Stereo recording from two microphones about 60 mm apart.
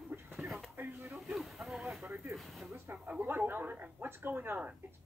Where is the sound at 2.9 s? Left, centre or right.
Right.